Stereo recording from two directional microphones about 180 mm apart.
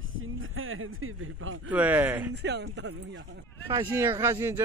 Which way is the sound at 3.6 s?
25° right (ahead or behind).